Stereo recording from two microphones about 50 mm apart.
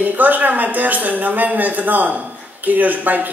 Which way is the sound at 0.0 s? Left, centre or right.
Right.